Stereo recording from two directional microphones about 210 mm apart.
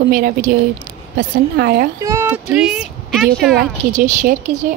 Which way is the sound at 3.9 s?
40° right (ahead or behind).